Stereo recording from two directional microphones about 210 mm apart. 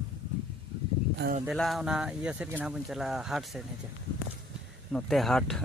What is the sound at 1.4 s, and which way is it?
Speech, centre (ahead or behind).